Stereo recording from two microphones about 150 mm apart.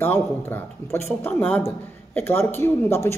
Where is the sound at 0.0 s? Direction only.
15° left (ahead or behind).